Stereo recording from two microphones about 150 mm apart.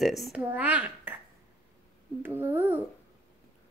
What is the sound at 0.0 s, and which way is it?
A child's voice, centre (ahead or behind).